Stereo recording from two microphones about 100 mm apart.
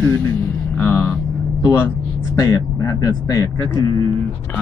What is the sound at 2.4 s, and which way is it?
Speech, 35° left (ahead or behind).